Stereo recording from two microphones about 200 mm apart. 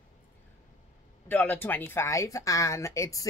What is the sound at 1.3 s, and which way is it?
A woman's voice, 10° left (ahead or behind).